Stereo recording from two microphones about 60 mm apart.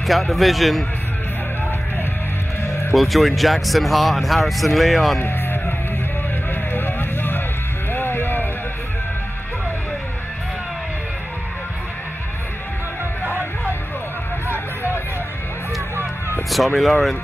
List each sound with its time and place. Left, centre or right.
0.0 s speech: centre
2.9 s speech: centre
5.2 s music: left
16.4 s speech: centre